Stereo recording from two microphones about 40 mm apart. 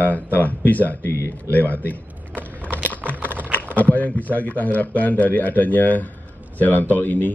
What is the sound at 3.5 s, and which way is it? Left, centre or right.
Speech, left.